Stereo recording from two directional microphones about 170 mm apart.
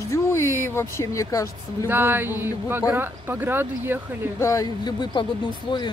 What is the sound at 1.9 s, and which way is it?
Speech, 10° right (ahead or behind).